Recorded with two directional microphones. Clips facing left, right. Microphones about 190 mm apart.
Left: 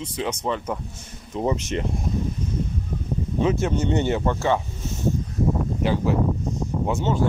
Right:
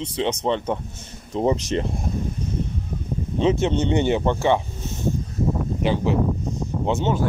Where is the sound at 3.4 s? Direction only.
20° right (ahead or behind).